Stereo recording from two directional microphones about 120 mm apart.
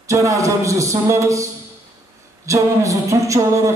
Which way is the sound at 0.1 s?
25° right (ahead or behind).